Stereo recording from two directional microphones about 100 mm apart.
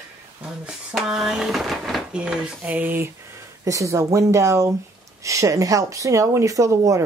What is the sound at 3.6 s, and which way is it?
Speech, 35° right (ahead or behind).